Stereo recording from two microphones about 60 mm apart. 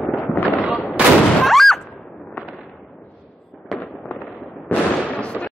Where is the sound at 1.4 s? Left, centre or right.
Centre.